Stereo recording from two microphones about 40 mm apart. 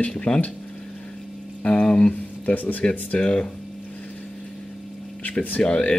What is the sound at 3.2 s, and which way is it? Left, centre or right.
Speech, left.